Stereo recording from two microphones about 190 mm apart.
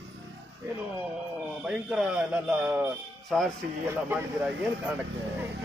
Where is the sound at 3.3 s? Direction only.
Centre (ahead or behind).